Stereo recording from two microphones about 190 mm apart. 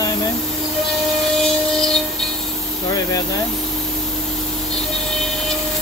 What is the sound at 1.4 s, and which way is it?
Train, 5° left (ahead or behind).